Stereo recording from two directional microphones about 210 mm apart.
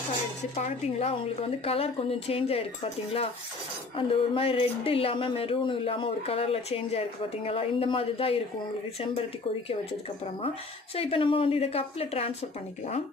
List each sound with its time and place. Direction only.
0.6 s speech: 30° left (ahead or behind)
11.0 s speech: 25° left (ahead or behind)